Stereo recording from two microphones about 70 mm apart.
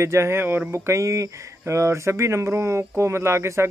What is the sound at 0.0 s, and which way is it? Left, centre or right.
Speech, right.